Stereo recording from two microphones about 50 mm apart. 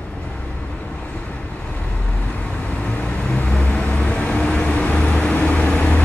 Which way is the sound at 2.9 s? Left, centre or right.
Left.